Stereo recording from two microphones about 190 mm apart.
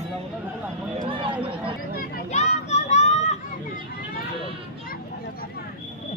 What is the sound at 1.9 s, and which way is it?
Children playing, 50° left (ahead or behind).